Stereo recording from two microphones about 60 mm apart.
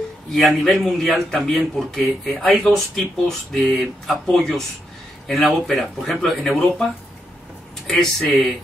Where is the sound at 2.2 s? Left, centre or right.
Centre.